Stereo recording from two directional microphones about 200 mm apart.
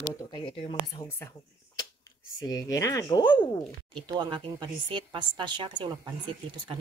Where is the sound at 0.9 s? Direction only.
15° left (ahead or behind).